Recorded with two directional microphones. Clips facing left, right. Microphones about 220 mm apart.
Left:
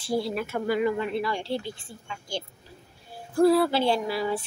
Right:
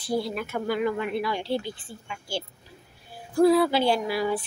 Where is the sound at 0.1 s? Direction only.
Centre (ahead or behind).